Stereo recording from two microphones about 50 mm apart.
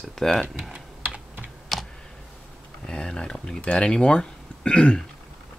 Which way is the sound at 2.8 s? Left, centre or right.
Centre.